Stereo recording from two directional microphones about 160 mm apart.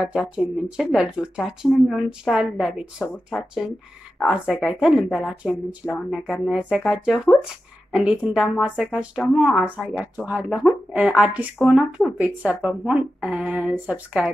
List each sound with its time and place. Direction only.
0.0 s speech: 5° right (ahead or behind)